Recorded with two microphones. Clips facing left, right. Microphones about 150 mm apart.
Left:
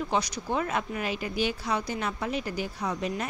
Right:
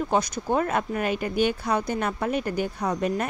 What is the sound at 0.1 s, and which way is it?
Speech, 50° right (ahead or behind).